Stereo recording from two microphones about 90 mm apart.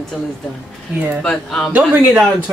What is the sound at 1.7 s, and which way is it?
Speech, 20° right (ahead or behind).